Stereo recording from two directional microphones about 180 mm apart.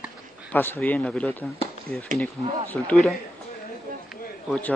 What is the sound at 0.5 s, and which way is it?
Speech, 10° left (ahead or behind).